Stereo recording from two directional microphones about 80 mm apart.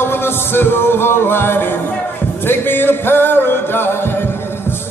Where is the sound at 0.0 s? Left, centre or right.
Left.